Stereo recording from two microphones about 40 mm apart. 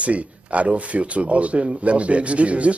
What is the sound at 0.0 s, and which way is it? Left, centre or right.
A man's voice, right.